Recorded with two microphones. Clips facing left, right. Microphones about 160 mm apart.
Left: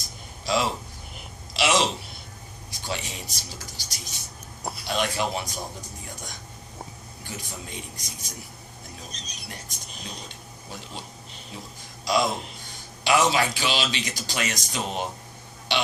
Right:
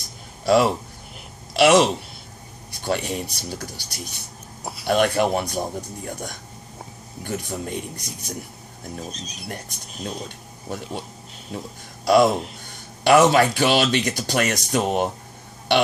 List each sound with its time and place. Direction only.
0.5 s a man's voice: 55° right (ahead or behind)
9.1 s speech: 5° right (ahead or behind)
10.2 s a man's voice: 55° right (ahead or behind)